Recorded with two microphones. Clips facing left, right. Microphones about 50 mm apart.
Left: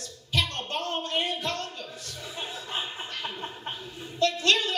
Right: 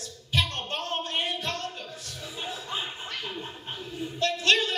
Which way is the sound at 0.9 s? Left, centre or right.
Right.